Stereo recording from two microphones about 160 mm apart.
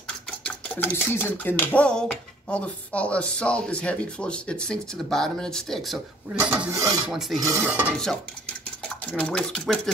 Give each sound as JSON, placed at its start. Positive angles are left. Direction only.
{"t": 0.5, "sound": "speech", "side_deg": 10}
{"t": 6.4, "sound": "filing", "side_deg": -10}
{"t": 7.1, "sound": "filing", "side_deg": 0}
{"t": 7.4, "sound": "filing", "side_deg": -15}
{"t": 8.8, "sound": "speech", "side_deg": 5}